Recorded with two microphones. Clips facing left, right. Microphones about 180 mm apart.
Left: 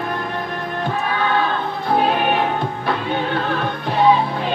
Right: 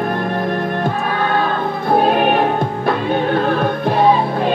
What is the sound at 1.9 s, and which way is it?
Music, 45° right (ahead or behind).